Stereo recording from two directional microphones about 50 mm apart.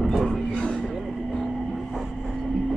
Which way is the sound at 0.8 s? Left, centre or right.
Centre.